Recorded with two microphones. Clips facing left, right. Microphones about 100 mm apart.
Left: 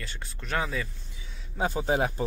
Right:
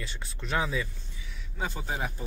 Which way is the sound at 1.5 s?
45° left (ahead or behind).